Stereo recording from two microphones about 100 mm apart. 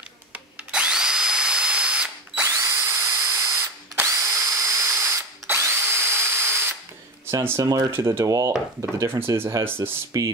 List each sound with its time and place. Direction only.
0.3 s drill: 10° right (ahead or behind)
2.4 s drill: 30° right (ahead or behind)
7.2 s speech: 30° right (ahead or behind)